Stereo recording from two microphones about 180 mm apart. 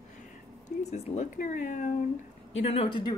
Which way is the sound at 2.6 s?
30° left (ahead or behind).